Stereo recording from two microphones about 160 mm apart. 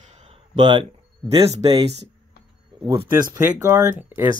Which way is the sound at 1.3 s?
25° right (ahead or behind).